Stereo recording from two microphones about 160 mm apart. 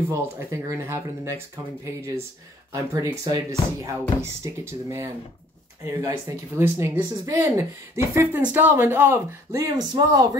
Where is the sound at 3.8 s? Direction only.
20° right (ahead or behind).